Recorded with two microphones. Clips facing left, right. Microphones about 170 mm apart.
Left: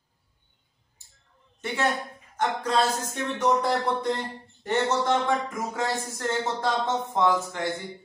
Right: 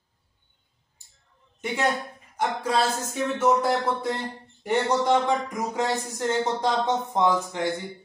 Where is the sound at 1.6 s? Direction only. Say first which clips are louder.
Right 1 dB; 15° right (ahead or behind).